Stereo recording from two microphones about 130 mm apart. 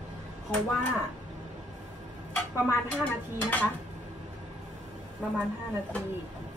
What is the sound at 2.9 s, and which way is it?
Speech, 10° left (ahead or behind).